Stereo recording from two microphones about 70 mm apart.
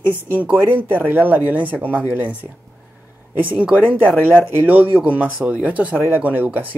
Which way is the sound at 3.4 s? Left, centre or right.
Centre.